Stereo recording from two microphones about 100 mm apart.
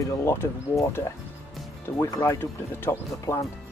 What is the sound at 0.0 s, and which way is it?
Speech, 25° left (ahead or behind).